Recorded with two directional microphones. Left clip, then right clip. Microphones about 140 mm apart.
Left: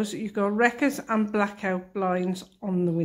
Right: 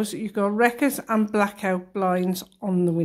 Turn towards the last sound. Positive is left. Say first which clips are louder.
# right 3 dB
turn(degrees=-30)  # may be behind; listen again after turning